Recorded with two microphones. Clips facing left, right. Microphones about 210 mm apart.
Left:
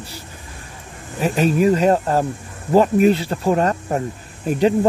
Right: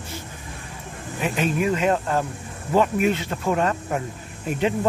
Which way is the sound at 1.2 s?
40° left (ahead or behind).